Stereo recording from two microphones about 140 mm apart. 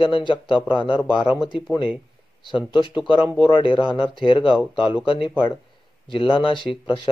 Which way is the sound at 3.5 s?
35° left (ahead or behind).